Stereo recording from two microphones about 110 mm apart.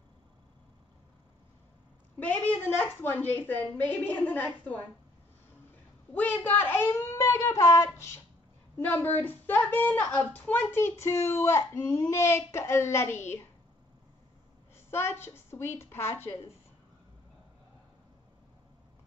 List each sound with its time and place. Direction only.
2.1 s a woman's voice: 15° left (ahead or behind)
6.1 s a woman's voice: 20° left (ahead or behind)
9.0 s a woman's voice: 15° left (ahead or behind)
14.9 s a woman's voice: 20° left (ahead or behind)